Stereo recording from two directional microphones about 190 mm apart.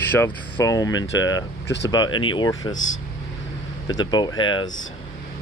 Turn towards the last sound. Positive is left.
turn(degrees=25)  # may be behind; listen again after turning